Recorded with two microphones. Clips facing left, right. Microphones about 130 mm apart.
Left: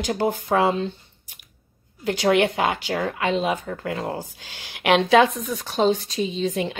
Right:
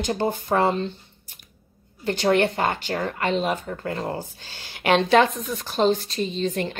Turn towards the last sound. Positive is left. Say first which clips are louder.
# left 1 dB
turn(degrees=10)  # may be behind; listen again after turning